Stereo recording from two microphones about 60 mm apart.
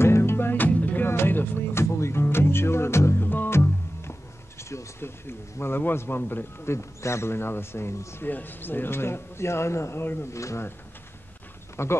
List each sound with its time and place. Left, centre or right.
0.0 s music: left
1.0 s music: left
3.3 s music: left
3.5 s speech: left
6.7 s speech: left
8.3 s speech: left
10.3 s speech: left
11.7 s speech: left